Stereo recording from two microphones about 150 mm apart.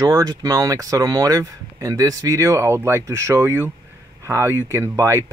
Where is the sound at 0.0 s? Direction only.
25° right (ahead or behind).